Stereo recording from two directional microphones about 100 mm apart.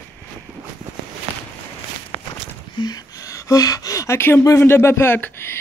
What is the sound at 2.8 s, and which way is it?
Speech, 40° left (ahead or behind).